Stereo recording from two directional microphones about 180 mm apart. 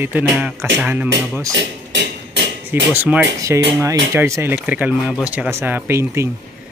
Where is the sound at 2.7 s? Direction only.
10° right (ahead or behind).